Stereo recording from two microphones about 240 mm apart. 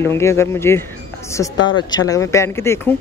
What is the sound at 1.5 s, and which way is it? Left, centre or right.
Speech, left.